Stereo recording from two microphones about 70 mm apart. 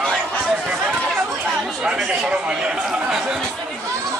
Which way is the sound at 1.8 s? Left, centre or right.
Centre.